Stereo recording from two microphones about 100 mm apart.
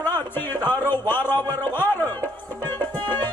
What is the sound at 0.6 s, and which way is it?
Speech, 20° left (ahead or behind).